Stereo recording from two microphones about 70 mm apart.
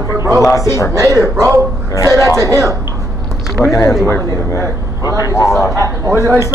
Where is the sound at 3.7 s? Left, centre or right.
Left.